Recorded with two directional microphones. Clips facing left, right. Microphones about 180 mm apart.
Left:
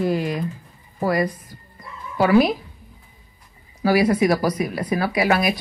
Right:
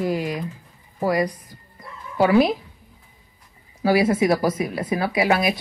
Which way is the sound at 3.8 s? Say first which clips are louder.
Left 1 dB; 25° right (ahead or behind).